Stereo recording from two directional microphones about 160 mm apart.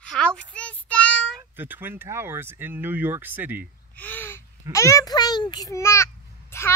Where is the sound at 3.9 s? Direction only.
10° left (ahead or behind).